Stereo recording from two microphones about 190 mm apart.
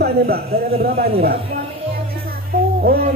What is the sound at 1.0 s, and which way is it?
Speech, 55° right (ahead or behind).